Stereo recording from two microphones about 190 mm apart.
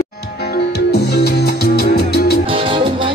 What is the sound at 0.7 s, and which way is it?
Music, 60° left (ahead or behind).